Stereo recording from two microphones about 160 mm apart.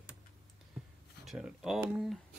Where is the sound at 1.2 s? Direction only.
Centre (ahead or behind).